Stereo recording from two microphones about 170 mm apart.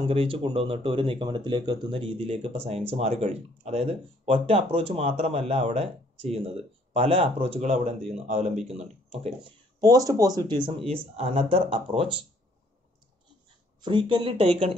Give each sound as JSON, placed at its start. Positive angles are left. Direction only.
{"t": 0.1, "sound": "speech", "side_deg": -30}
{"t": 9.8, "sound": "speech", "side_deg": -20}
{"t": 13.7, "sound": "speech", "side_deg": -30}